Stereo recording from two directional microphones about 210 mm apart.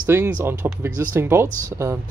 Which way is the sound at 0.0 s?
10° right (ahead or behind).